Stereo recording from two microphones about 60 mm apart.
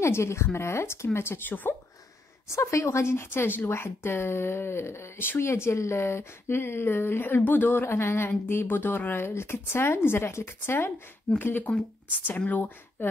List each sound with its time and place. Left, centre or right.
0.0 s speech: left
1.5 s speech: left
2.4 s speech: left
7.9 s speech: left
11.2 s speech: left